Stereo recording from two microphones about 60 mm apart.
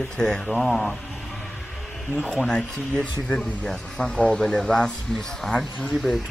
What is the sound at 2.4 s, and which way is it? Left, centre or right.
A man's voice, centre.